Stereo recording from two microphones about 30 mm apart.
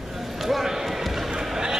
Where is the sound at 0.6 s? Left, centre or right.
Centre.